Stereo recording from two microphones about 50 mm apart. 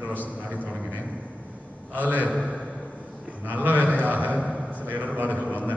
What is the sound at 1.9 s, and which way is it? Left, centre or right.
Speech, right.